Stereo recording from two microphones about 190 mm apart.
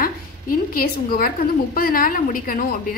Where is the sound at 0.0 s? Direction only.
50° left (ahead or behind).